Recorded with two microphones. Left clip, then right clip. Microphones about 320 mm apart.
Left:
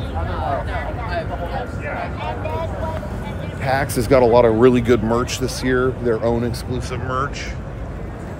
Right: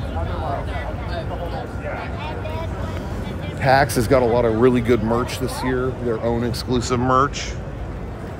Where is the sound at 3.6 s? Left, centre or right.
Right.